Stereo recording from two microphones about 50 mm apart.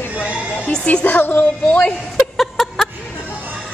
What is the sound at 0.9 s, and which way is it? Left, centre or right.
Speech, left.